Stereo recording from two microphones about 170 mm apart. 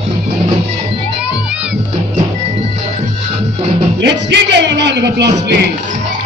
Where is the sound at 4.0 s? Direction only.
85° right.